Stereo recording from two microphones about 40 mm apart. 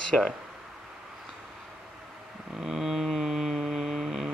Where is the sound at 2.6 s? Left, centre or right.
Centre.